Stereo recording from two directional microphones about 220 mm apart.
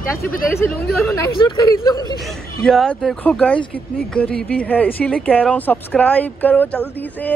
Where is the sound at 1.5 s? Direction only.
20° left (ahead or behind).